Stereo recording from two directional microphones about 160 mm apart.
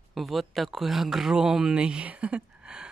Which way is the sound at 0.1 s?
Centre (ahead or behind).